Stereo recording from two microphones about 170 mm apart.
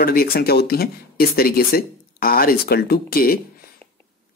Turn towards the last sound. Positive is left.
turn(degrees=60)  # may be behind; listen again after turning